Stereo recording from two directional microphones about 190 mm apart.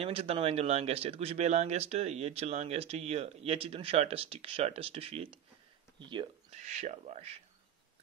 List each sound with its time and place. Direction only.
0.0 s speech: 30° right (ahead or behind)
5.9 s a sound: 25° right (ahead or behind)
6.6 s speech: 35° right (ahead or behind)